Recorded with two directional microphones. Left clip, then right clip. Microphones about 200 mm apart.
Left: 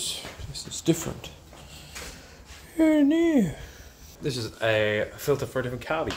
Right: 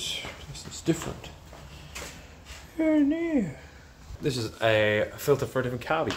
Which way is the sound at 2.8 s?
40° left (ahead or behind).